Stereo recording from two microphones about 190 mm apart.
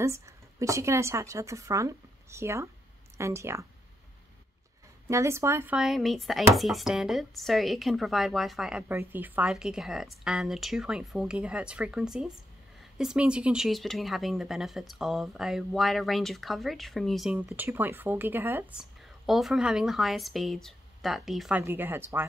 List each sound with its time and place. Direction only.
0.0 s speech: 15° right (ahead or behind)
5.0 s speech: 15° right (ahead or behind)
5.8 s speech: centre (ahead or behind)